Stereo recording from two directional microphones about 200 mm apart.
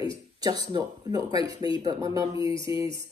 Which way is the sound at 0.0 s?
20° right (ahead or behind).